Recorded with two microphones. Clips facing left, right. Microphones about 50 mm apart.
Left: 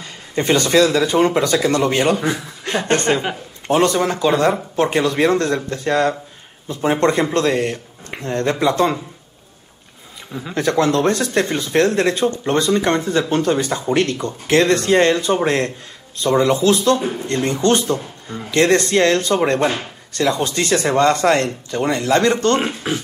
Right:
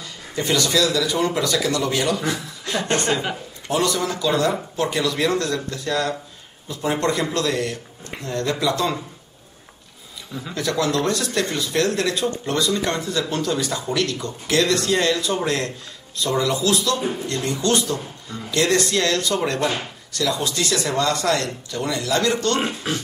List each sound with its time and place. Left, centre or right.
0.0 s speech: left
10.5 s speech: left